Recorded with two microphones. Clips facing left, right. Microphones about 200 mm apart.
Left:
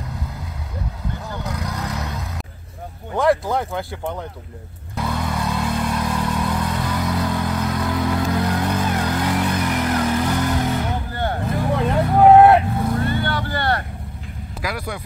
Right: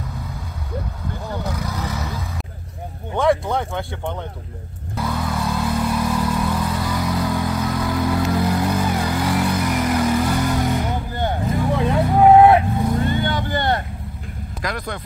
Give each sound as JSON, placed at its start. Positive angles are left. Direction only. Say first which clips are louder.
{"t": 1.4, "sound": "vehicle", "louder": "left 1 dB", "side_deg": -5}
{"t": 3.2, "sound": "speech", "louder": "even", "side_deg": 0}
{"t": 4.9, "sound": "vehicle", "louder": "even", "side_deg": 0}
{"t": 11.7, "sound": "vehicle", "louder": "even", "side_deg": 0}
{"t": 13.0, "sound": "vehicle", "louder": "right 1 dB", "side_deg": -20}
{"t": 14.6, "sound": "vehicle", "louder": "even", "side_deg": 10}